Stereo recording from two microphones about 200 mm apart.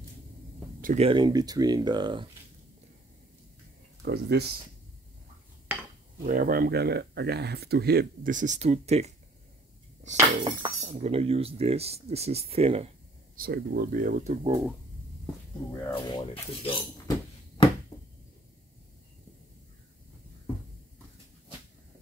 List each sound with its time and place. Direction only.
0.7 s a sound: 45° right (ahead or behind)
1.0 s speech: 25° right (ahead or behind)
4.0 s speech: 55° right (ahead or behind)
6.2 s speech: 45° right (ahead or behind)
10.1 s speech: 20° right (ahead or behind)
13.4 s speech: 50° right (ahead or behind)
14.4 s speech: 15° right (ahead or behind)
15.9 s speech: 25° left (ahead or behind)
17.6 s finger snapping: 25° left (ahead or behind)